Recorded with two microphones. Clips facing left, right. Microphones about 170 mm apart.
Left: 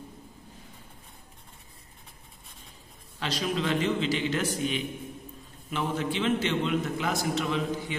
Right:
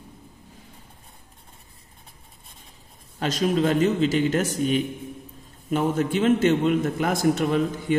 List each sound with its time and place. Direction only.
3.2 s a man's voice: 45° right (ahead or behind)